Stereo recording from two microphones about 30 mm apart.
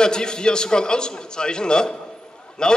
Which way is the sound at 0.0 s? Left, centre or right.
Left.